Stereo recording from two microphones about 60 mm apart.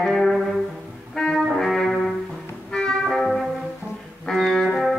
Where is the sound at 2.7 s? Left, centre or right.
Centre.